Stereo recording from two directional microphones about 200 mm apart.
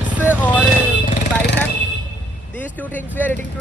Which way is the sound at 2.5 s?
10° left (ahead or behind).